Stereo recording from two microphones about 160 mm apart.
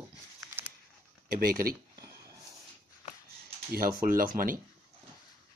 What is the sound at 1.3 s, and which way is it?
Speech, 65° right (ahead or behind).